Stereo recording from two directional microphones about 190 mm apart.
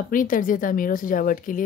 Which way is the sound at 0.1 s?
45° left (ahead or behind).